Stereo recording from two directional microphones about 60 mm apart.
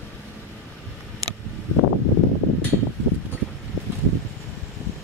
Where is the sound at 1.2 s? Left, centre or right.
Right.